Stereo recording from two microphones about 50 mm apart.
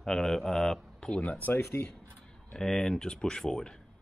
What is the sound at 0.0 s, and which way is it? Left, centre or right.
Speech, centre.